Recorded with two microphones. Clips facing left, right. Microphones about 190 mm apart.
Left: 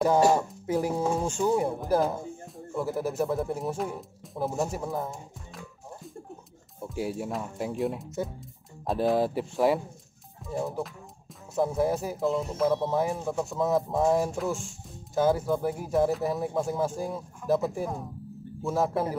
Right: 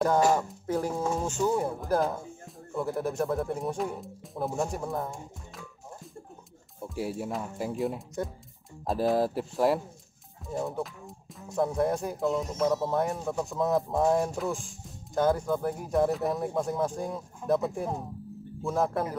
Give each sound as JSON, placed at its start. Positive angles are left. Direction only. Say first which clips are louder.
{"t": 0.0, "sound": "speech", "louder": "left 2 dB", "side_deg": 10}
{"t": 6.8, "sound": "speech", "louder": "left 1 dB", "side_deg": 0}
{"t": 17.4, "sound": "speech", "louder": "left 1 dB", "side_deg": -25}
{"t": 18.6, "sound": "speech", "louder": "left 1 dB", "side_deg": 0}